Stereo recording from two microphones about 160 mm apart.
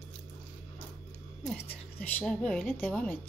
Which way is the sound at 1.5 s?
10° left (ahead or behind).